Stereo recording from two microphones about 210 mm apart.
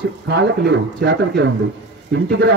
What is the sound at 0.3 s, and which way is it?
A man's voice, 55° right (ahead or behind).